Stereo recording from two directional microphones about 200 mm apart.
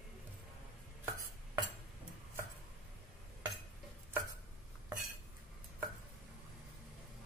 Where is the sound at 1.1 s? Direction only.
15° right (ahead or behind).